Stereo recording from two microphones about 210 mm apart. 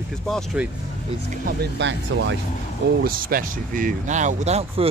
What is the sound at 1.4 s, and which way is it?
Speech, 55° right (ahead or behind).